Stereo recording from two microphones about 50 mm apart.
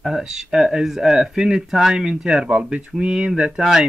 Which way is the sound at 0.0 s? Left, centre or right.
Centre.